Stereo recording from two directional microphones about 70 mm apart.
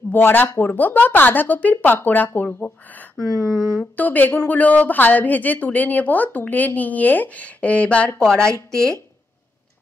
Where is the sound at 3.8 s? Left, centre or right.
Left.